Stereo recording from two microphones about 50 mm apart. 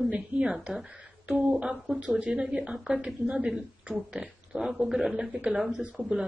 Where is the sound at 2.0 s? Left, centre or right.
Right.